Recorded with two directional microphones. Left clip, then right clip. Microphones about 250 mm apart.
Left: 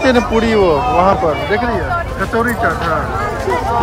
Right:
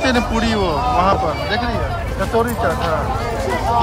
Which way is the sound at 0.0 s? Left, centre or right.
Centre.